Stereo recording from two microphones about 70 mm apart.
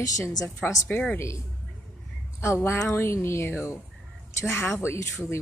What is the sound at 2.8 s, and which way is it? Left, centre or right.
A woman's voice, left.